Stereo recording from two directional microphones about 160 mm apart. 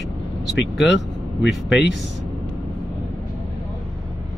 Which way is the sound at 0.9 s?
90° left.